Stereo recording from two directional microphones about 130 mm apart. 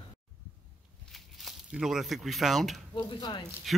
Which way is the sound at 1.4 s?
Centre (ahead or behind).